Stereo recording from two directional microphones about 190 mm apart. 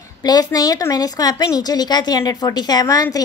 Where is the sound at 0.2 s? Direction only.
20° left (ahead or behind).